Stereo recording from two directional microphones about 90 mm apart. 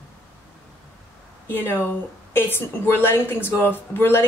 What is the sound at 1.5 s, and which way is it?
A woman's voice, 25° left (ahead or behind).